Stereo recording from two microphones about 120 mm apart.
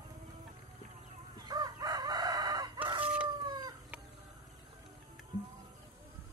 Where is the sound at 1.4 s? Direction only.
35° right (ahead or behind).